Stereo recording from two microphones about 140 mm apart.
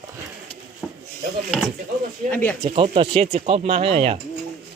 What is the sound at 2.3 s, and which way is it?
Speech, 10° left (ahead or behind).